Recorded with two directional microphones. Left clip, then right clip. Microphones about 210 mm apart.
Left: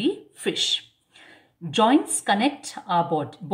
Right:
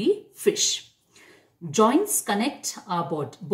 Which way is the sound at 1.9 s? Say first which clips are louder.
Left 2 dB; 55° left (ahead or behind).